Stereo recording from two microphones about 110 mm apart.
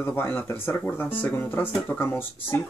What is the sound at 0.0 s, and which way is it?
Speech, 20° left (ahead or behind).